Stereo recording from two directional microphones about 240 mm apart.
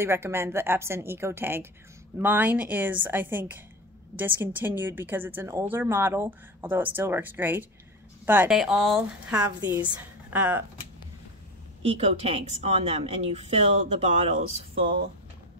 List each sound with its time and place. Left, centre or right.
0.0 s a woman's voice: centre
11.8 s a woman's voice: right